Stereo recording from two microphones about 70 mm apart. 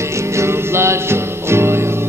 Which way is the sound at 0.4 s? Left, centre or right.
Right.